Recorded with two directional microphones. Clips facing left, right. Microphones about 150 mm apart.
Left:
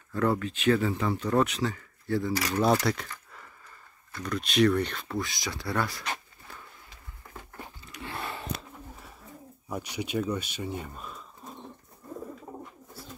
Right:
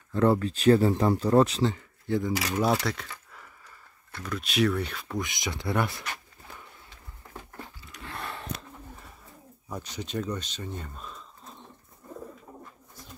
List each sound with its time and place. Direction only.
0.1 s speech: 30° right (ahead or behind)
2.6 s speech: centre (ahead or behind)
5.2 s speech: 20° right (ahead or behind)
7.9 s a sound: centre (ahead or behind)
9.7 s speech: 10° left (ahead or behind)